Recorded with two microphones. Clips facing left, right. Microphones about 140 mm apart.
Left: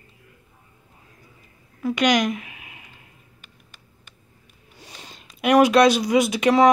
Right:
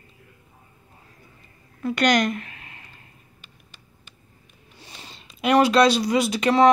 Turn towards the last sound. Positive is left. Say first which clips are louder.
# left 2 dB
turn(degrees=0)  # may be behind; listen again after turning